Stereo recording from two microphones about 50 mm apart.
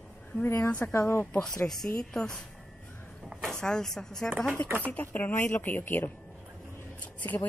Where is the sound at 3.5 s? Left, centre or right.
Centre.